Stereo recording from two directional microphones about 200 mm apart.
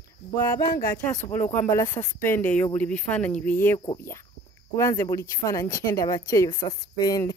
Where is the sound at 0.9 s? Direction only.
10° left (ahead or behind).